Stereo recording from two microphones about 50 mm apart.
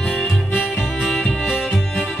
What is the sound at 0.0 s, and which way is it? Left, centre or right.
Music, centre.